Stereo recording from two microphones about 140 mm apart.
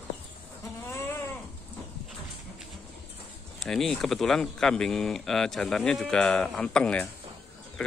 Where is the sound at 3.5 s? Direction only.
5° left (ahead or behind).